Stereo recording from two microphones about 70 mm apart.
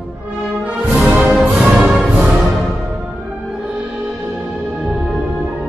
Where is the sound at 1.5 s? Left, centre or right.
Centre.